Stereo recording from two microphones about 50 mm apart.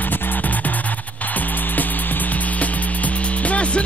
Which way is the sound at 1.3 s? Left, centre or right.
Left.